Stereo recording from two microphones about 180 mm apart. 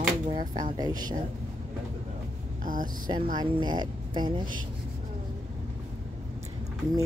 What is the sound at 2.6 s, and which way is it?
Speech, 50° right (ahead or behind).